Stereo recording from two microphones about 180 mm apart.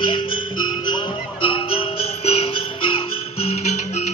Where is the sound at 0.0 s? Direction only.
30° left (ahead or behind).